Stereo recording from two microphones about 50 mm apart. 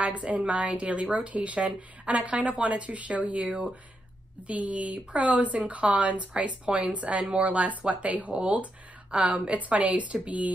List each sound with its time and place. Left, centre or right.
0.0 s speech: right